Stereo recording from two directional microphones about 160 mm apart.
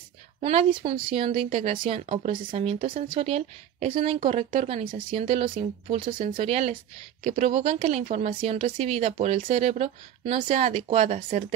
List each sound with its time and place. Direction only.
0.4 s speech: 40° right (ahead or behind)